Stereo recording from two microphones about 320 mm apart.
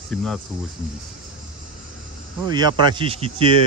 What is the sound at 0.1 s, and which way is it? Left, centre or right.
Speech, centre.